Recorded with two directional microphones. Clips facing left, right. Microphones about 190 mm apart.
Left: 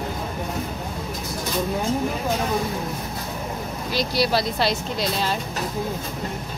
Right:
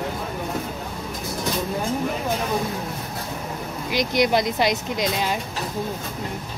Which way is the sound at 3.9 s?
15° right (ahead or behind).